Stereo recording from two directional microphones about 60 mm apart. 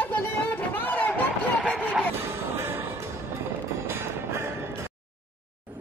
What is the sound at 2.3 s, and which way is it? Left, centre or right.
Music, right.